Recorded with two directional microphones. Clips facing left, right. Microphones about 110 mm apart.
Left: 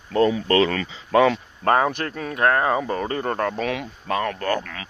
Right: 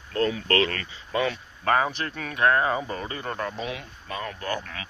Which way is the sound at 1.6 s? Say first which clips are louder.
Left 3 dB; 45° left (ahead or behind).